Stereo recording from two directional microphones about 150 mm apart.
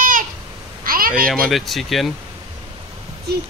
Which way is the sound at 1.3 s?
Centre (ahead or behind).